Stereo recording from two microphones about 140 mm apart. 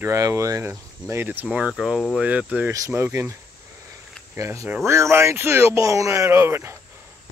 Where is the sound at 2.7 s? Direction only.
20° right (ahead or behind).